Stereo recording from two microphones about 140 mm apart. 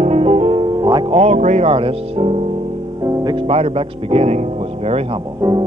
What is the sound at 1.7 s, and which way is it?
Speech, 40° right (ahead or behind).